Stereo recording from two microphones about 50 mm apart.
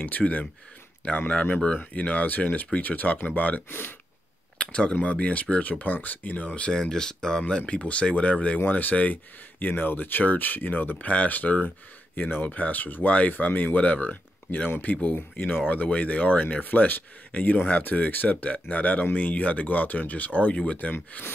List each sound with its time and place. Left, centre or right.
0.0 s speech: left
3.6 s speech: left
4.6 s speech: centre
6.8 s speech: centre
8.5 s speech: left